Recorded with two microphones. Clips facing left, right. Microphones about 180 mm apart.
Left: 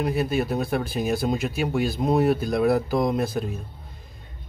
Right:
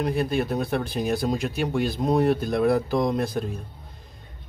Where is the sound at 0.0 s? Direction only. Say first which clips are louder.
Even; 5° left (ahead or behind).